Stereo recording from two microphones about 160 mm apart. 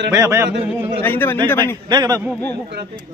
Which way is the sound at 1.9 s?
20° right (ahead or behind).